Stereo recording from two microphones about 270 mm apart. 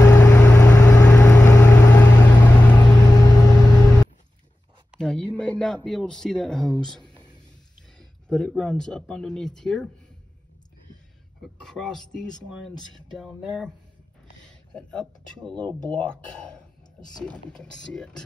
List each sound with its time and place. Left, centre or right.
0.0 s vehicle: centre
4.9 s a sound: centre
8.0 s speech: centre
11.4 s speech: centre
14.7 s speech: centre